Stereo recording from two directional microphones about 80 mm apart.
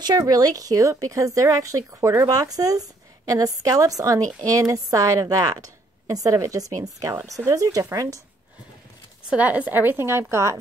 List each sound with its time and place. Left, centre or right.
0.0 s speech: right
9.3 s a woman's voice: centre; by 10.6 s right